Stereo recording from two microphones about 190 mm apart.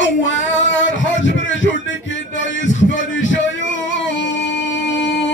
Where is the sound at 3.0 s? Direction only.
80° left.